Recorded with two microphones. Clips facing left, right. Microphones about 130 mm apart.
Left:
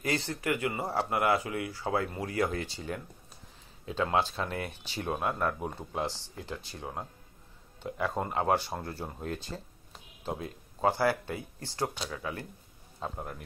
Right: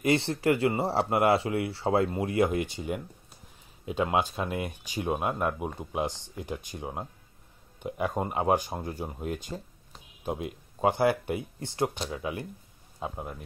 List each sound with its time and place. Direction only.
0.0 s speech: 25° right (ahead or behind)
13.0 s speech: 5° right (ahead or behind)